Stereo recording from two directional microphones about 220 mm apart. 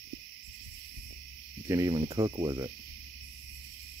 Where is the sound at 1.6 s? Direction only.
15° right (ahead or behind).